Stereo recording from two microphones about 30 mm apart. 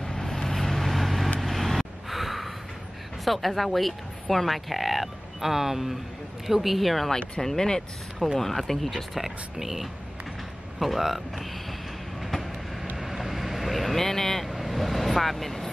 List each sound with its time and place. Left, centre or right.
0.0 s vehicle: centre
3.3 s speech: centre
7.4 s speech: centre
8.9 s speech: centre
12.9 s vehicle: centre
14.0 s speech: centre
14.5 s speech: centre